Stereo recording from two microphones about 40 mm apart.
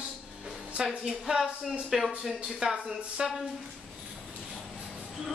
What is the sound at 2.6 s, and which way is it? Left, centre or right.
Speech, right.